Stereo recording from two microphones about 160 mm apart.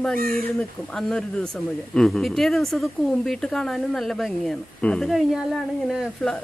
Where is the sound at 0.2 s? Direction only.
65° right (ahead or behind).